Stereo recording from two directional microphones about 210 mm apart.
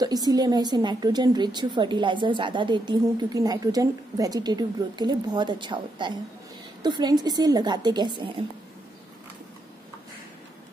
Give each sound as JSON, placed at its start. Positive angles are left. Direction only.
{"t": 0.0, "sound": "a woman's voice", "side_deg": -20}